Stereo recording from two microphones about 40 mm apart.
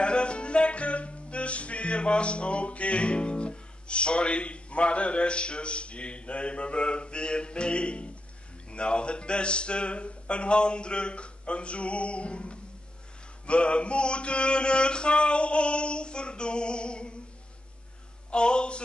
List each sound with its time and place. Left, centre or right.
0.0 s music: left
8.6 s speech: left
18.3 s speech: left